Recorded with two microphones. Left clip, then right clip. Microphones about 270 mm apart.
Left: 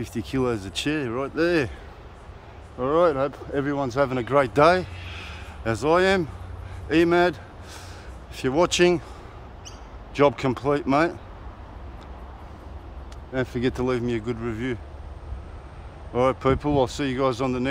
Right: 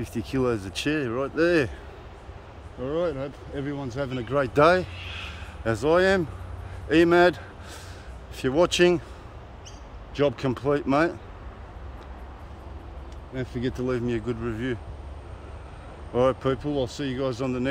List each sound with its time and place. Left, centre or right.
0.0 s speech: centre
2.8 s speech: centre
8.4 s speech: centre
10.1 s speech: centre
13.3 s speech: centre
16.1 s speech: centre